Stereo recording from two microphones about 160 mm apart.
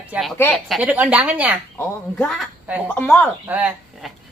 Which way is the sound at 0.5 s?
Centre (ahead or behind).